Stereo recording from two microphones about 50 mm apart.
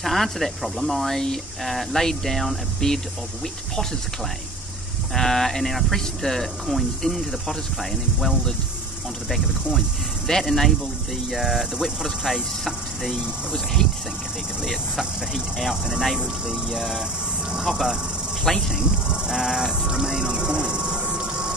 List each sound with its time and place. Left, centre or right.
0.0 s speech: centre
5.1 s speech: centre
10.2 s speech: centre
11.3 s cricket: centre
14.7 s cricket: centre
18.5 s speech: centre
18.8 s music: centre